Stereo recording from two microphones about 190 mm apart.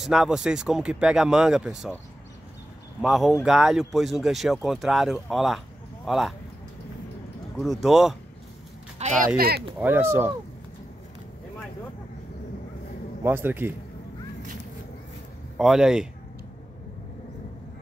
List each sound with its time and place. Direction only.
0.0 s speech: centre (ahead or behind)
3.0 s speech: centre (ahead or behind)
7.5 s speech: centre (ahead or behind)
9.0 s speech: 35° right (ahead or behind)
9.8 s a man's voice: 10° right (ahead or behind)
13.2 s a man's voice: 10° right (ahead or behind)
15.5 s speech: centre (ahead or behind)